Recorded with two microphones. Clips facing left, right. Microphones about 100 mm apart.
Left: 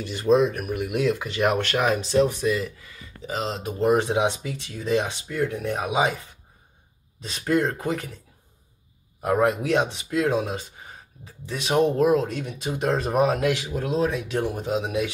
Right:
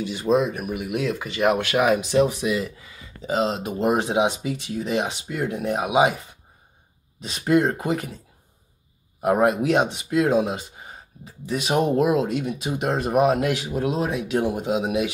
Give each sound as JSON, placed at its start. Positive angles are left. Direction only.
{"t": 0.0, "sound": "speech", "side_deg": 0}
{"t": 7.2, "sound": "speech", "side_deg": -15}
{"t": 9.2, "sound": "speech", "side_deg": -15}
{"t": 11.4, "sound": "speech", "side_deg": -10}